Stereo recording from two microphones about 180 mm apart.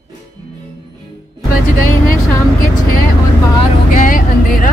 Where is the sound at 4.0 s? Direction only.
50° left (ahead or behind).